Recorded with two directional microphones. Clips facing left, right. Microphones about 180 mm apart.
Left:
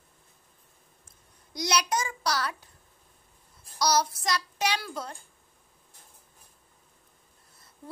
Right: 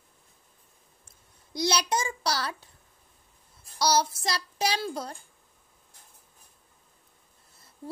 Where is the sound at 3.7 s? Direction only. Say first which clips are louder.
Right 1 dB; 30° right (ahead or behind).